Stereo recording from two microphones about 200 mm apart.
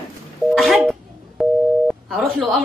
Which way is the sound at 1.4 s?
Centre (ahead or behind).